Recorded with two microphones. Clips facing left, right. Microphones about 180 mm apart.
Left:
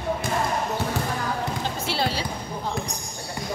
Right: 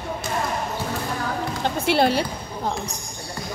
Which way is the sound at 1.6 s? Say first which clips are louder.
Right 7 dB; 60° right (ahead or behind).